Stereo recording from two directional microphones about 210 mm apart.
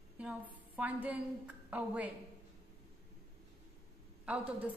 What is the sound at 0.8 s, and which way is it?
A woman's voice, 5° right (ahead or behind).